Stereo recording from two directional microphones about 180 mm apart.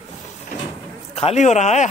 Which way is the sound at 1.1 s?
35° left (ahead or behind).